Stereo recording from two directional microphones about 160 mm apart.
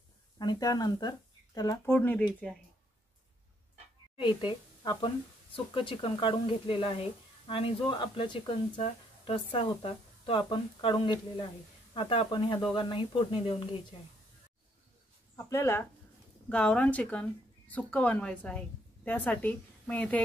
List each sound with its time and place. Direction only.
0.4 s speech: 25° left (ahead or behind)
4.2 s speech: 30° left (ahead or behind)
15.3 s speech: 15° left (ahead or behind)